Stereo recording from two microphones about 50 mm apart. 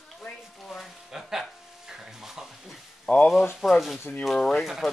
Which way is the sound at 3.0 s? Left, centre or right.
Left.